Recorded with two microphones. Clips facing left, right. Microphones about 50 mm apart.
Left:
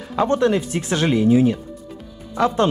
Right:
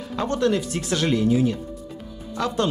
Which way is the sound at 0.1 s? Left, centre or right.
Left.